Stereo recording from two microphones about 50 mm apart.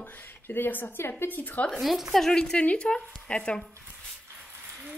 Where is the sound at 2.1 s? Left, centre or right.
Centre.